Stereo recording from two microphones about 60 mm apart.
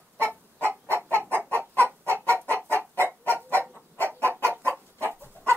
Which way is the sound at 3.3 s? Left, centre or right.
Right.